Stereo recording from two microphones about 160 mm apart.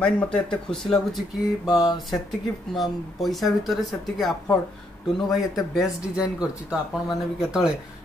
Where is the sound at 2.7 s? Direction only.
Centre (ahead or behind).